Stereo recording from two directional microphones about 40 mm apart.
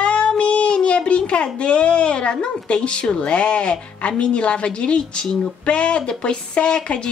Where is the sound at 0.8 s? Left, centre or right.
Left.